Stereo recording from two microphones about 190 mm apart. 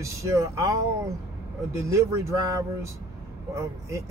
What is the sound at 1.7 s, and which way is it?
Speech, 15° right (ahead or behind).